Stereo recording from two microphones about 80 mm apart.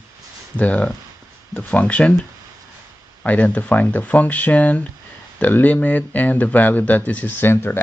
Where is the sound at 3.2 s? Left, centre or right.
Centre.